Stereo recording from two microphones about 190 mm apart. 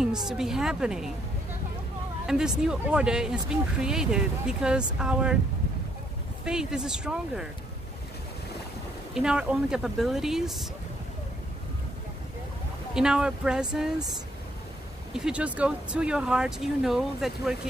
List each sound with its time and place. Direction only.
0.0 s speech: 5° right (ahead or behind)
2.2 s speech: 5° right (ahead or behind)
6.4 s speech: 5° right (ahead or behind)
9.1 s speech: 5° right (ahead or behind)
12.9 s speech: 5° right (ahead or behind)
15.1 s speech: 5° right (ahead or behind)